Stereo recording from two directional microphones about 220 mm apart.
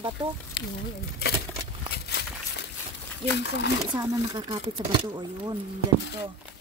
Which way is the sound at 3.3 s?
50° left (ahead or behind).